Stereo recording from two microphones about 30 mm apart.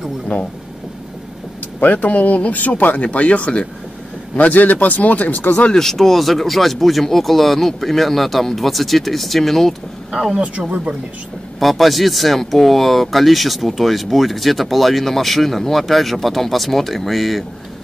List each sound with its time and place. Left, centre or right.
0.3 s speech: left
1.8 s speech: left
4.4 s a man's voice: left
4.7 s speech: left
5.7 s speech: centre
10.1 s speech: centre
11.6 s speech: centre